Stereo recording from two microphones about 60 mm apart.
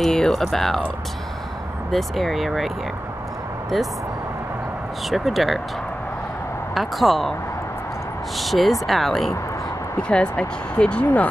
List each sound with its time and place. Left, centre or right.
0.0 s speech: centre
1.9 s speech: centre
3.7 s speech: centre
5.1 s speech: centre
6.7 s speech: centre
8.4 s speech: centre
10.0 s speech: centre